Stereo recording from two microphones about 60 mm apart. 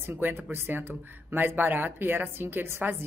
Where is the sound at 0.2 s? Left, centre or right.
Right.